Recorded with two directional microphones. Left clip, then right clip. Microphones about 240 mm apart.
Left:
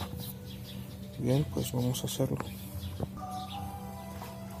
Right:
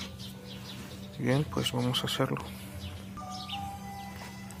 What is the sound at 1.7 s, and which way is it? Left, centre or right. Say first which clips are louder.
Speech: right 4 dB; right.